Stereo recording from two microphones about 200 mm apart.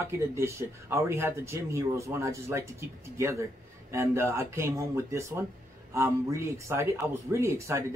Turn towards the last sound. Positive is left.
turn(degrees=-15)  # may be behind; listen again after turning